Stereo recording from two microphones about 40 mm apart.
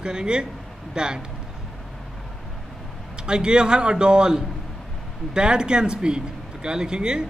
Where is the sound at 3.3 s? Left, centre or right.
Right.